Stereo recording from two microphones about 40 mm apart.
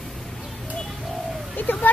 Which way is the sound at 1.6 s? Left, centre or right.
Left.